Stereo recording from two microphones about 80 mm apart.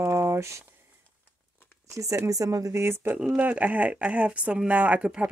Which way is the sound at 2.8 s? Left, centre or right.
Right.